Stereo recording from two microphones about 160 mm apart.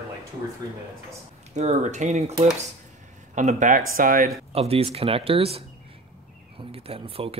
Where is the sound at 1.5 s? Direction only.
45° right (ahead or behind).